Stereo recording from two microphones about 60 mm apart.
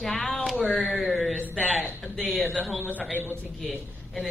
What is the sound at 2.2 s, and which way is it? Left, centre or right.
Speech, left.